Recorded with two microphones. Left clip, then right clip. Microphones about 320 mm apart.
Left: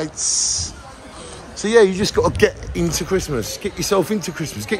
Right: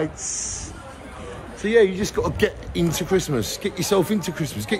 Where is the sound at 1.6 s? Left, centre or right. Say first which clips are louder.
Left 4 dB; left.